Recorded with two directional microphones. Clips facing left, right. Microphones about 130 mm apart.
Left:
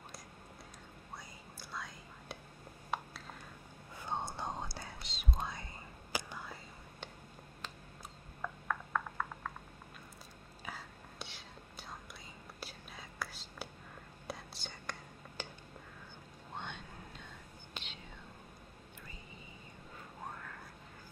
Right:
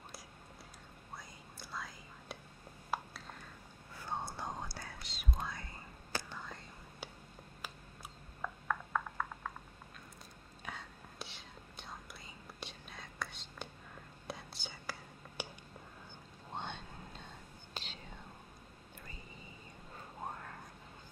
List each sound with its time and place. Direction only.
1.1 s whispering: centre (ahead or behind)
2.9 s a sound: centre (ahead or behind)
3.9 s whispering: 20° left (ahead or behind)
6.1 s whispering: 10° left (ahead or behind)
8.4 s a sound: 5° right (ahead or behind)
10.6 s whispering: centre (ahead or behind)
16.5 s vehicle: 30° right (ahead or behind)
17.8 s whispering: 35° right (ahead or behind)
20.2 s a sound: 35° right (ahead or behind)